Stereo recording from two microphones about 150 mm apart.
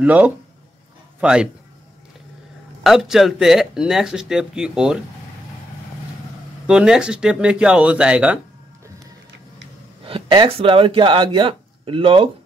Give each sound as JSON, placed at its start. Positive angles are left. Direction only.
{"t": 0.0, "sound": "speech", "side_deg": -10}
{"t": 2.8, "sound": "speech", "side_deg": 0}
{"t": 6.7, "sound": "speech", "side_deg": -5}
{"t": 10.0, "sound": "speech", "side_deg": -35}